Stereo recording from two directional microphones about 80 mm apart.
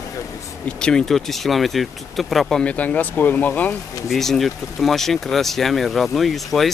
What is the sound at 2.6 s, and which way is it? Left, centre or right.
Speech, centre.